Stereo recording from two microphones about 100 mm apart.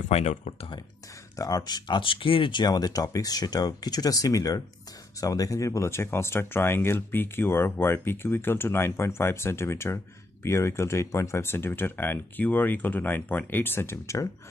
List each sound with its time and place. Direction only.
1.4 s speech: 40° left (ahead or behind)